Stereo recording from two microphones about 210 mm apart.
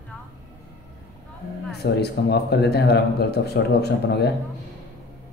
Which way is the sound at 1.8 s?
50° left (ahead or behind).